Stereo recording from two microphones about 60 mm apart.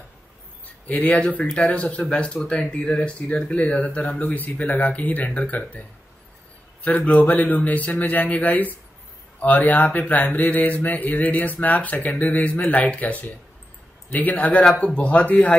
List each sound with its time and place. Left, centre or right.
0.8 s speech: left